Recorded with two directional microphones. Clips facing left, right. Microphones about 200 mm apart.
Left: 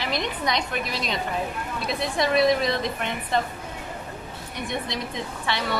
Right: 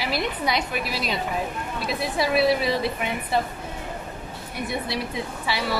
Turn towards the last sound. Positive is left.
turn(degrees=-5)  # may be behind; listen again after turning